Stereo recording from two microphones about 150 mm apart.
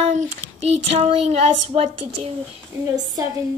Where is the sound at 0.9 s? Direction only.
45° right (ahead or behind).